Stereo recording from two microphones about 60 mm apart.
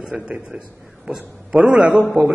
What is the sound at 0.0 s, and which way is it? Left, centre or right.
A man's voice, centre.